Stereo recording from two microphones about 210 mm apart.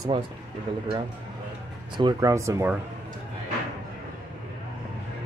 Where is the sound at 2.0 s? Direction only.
15° right (ahead or behind).